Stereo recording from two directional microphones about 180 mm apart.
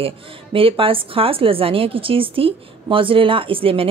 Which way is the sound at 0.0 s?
30° right (ahead or behind).